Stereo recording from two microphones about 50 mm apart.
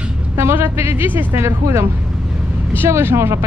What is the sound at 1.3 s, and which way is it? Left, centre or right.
Speech, right.